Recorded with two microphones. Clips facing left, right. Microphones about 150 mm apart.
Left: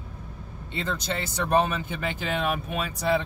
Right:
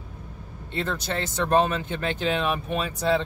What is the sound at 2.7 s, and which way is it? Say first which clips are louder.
Speech: right 2 dB; 10° left (ahead or behind).